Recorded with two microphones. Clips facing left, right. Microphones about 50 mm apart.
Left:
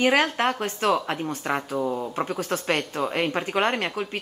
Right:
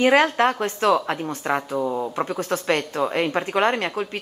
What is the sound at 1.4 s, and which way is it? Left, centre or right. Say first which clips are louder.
A woman's voice: right 4 dB; centre.